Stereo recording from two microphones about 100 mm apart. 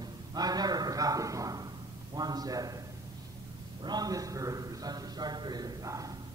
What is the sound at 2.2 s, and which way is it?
Speech, 40° right (ahead or behind).